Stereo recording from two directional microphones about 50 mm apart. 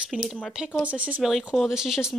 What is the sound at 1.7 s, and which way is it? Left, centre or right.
Speech, centre.